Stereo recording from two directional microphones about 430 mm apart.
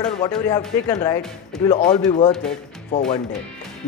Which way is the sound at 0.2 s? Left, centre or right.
Centre.